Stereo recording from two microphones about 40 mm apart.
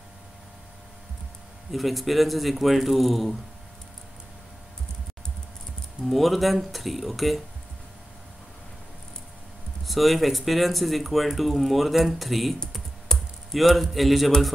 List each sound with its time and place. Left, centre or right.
1.7 s speech: centre
6.0 s speech: centre
9.8 s speech: centre
13.1 s typing: centre
13.5 s speech: centre